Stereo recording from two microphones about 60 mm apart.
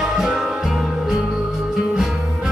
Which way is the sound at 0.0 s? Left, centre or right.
Centre.